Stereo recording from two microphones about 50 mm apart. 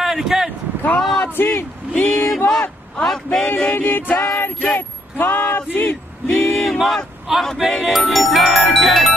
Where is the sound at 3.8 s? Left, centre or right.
Left.